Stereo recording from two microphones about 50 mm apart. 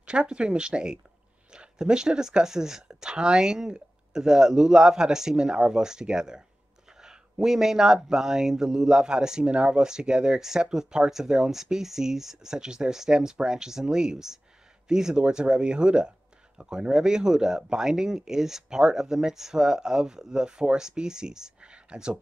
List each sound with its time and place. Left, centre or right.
0.0 s speech: right